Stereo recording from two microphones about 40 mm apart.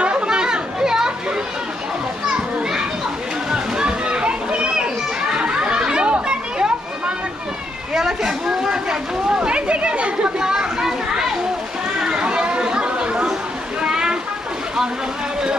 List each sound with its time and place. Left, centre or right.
0.0 s chatter: right
2.2 s children playing: right
3.4 s a sound: right
6.1 s children playing: right
7.9 s a sound: centre
9.4 s chatter: right
10.4 s children playing: centre
12.0 s chatter: right
13.7 s a sound: centre